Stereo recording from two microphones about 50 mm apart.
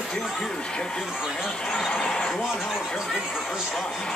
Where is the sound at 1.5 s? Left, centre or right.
Centre.